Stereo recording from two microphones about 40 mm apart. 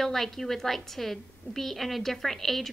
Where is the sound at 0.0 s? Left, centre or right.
Centre.